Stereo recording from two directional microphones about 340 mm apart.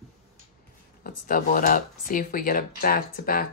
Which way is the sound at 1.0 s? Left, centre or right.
Left.